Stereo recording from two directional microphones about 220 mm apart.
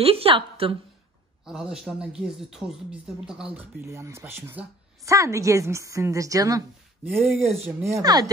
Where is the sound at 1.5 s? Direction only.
Centre (ahead or behind).